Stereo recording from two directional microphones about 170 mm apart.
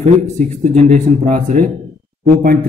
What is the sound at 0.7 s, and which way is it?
Speech, 45° right (ahead or behind).